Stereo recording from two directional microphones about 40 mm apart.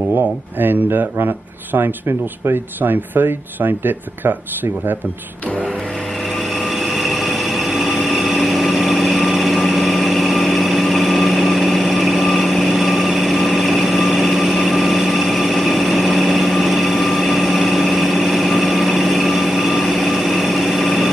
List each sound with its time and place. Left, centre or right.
0.6 s speech: right
6.8 s vehicle: centre